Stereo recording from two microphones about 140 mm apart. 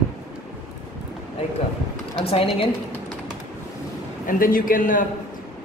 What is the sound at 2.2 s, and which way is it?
Speech, 45° left (ahead or behind).